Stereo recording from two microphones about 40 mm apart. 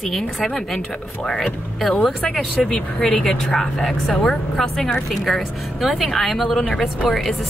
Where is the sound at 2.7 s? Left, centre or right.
Left.